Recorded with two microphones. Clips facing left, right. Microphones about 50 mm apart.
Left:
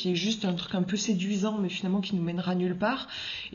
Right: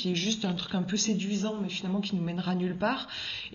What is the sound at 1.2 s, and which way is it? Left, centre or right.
Speech, left.